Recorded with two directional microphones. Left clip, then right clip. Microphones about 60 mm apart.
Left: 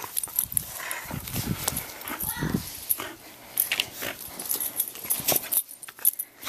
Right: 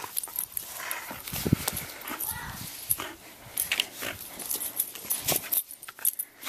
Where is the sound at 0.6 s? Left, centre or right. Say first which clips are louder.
Even; centre.